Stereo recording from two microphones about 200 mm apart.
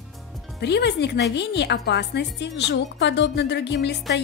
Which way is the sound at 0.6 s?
55° left (ahead or behind).